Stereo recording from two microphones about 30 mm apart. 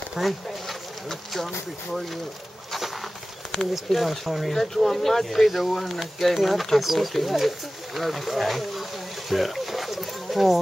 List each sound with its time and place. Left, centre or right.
0.2 s speech: centre
1.0 s speech: centre
3.5 s speech: centre
3.9 s speech: centre
4.3 s speech: centre
4.6 s speech: centre
9.3 s a sound: centre